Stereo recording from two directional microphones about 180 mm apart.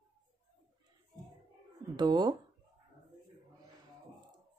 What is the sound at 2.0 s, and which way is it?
Speech, 25° right (ahead or behind).